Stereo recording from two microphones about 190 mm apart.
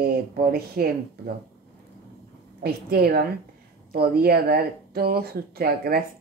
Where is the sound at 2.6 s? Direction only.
55° right (ahead or behind).